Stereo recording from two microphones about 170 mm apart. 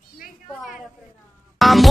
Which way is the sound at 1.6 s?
Centre (ahead or behind).